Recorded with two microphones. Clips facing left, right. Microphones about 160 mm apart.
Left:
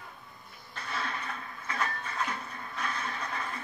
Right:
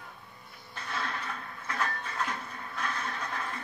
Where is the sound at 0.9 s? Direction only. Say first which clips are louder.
Even; centre (ahead or behind).